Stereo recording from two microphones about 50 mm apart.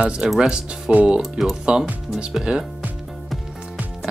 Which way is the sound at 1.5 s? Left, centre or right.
Centre.